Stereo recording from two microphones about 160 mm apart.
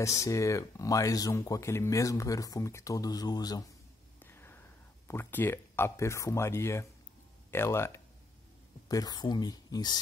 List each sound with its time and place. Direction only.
0.0 s speech: 20° left (ahead or behind)
4.2 s a sound: 15° left (ahead or behind)
7.5 s speech: 15° left (ahead or behind)